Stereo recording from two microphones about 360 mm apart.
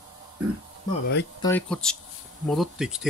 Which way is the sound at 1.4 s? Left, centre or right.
Centre.